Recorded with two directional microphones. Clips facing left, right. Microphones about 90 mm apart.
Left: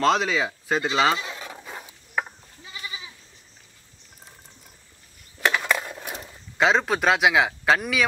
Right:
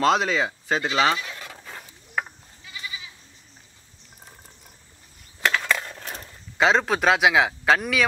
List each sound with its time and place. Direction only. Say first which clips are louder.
0.0 s speech: right 1 dB; centre (ahead or behind)
1.1 s a sound: left 1 dB; 15° left (ahead or behind)
2.6 s goat: even; 30° left (ahead or behind)
5.4 s skateboard: even; 15° left (ahead or behind)
6.6 s speech: right 1 dB; centre (ahead or behind)